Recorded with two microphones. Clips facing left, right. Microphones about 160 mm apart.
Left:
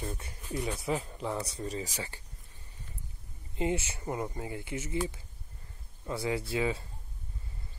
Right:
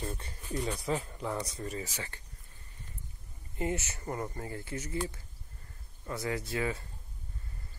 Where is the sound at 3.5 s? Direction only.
20° left (ahead or behind).